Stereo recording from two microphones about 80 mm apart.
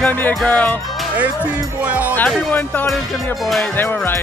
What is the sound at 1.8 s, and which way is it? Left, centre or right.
Speech, centre.